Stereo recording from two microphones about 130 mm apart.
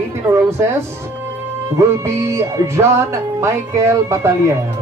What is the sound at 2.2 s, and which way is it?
Speech, 20° right (ahead or behind).